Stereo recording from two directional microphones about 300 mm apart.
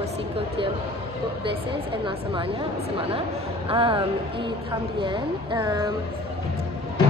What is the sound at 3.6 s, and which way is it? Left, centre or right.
Speech, centre.